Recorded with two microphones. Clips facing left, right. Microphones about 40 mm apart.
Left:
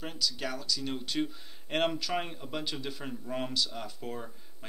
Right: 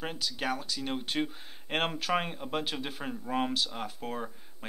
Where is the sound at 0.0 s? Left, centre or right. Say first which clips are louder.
Right 1 dB; right.